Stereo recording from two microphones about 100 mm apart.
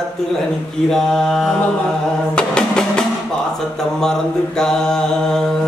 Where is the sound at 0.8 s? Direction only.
5° left (ahead or behind).